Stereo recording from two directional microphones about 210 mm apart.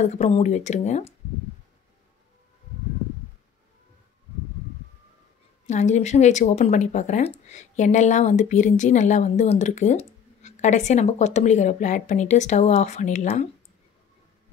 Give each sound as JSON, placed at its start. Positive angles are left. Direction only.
{"t": 0.0, "sound": "speech", "side_deg": 30}
{"t": 5.7, "sound": "speech", "side_deg": 35}